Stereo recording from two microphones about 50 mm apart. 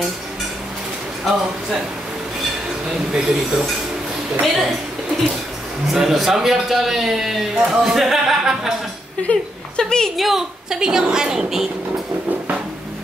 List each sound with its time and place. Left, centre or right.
1.3 s speech: centre
2.9 s a man's voice: centre
5.9 s a man's voice: centre
9.3 s speech: left
9.8 s a woman's voice: centre
10.1 s a man's voice: centre